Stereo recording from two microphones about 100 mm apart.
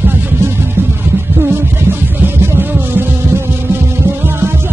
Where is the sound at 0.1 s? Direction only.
25° right (ahead or behind).